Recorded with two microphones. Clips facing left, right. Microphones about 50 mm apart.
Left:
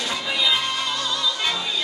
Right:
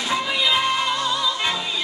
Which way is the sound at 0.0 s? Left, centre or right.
Centre.